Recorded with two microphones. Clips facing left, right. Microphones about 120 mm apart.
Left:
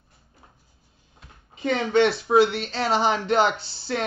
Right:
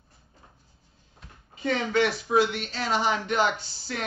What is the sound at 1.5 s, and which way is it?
Speech, 25° left (ahead or behind).